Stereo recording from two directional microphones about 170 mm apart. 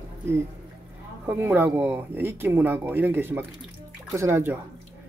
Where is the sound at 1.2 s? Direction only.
15° right (ahead or behind).